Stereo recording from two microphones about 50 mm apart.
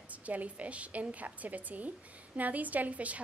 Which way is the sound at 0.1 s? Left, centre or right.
Right.